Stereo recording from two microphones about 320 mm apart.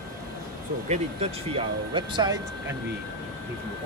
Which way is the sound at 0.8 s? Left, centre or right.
Centre.